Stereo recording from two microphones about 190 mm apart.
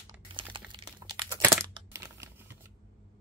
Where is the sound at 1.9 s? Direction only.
15° right (ahead or behind).